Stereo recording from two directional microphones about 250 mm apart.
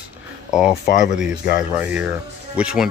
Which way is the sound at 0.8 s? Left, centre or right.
Left.